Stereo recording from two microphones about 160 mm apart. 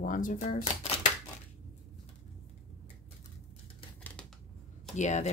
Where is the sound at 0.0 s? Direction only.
55° left (ahead or behind).